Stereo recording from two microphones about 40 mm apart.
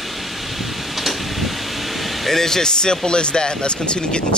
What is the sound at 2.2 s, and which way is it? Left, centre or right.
Speech, centre.